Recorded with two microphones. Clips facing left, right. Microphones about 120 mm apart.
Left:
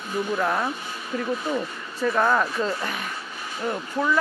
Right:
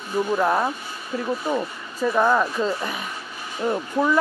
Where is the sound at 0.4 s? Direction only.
15° right (ahead or behind).